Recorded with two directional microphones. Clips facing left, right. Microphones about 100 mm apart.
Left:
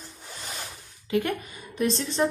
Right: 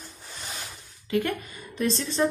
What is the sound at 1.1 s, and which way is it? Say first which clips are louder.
Speech: even; 15° left (ahead or behind).